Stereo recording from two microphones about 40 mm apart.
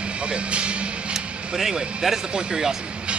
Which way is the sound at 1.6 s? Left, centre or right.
Centre.